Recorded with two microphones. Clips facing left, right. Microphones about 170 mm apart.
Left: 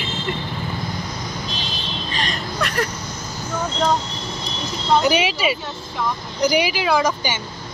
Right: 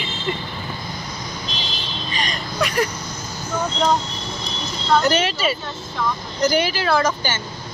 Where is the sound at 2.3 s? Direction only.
Centre (ahead or behind).